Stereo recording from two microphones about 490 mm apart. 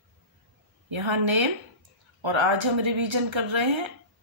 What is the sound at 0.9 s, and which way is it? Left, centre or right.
Speech, right.